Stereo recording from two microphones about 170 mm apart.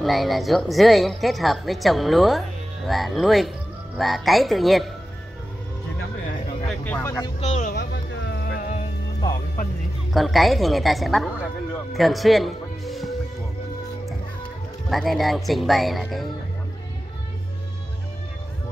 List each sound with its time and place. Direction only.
0.0 s a woman's voice: centre (ahead or behind)
6.7 s speech: 10° left (ahead or behind)
7.3 s speech: 45° left (ahead or behind)
7.7 s music: 85° left; by 8.8 s 55° left (ahead or behind)
10.1 s a woman's voice: centre (ahead or behind)
14.9 s a woman's voice: centre (ahead or behind)